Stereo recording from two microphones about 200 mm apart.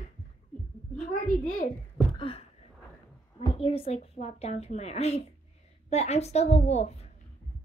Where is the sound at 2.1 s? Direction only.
25° left (ahead or behind).